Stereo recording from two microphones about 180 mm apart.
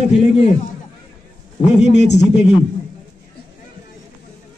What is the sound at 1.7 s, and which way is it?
Speech, 40° left (ahead or behind).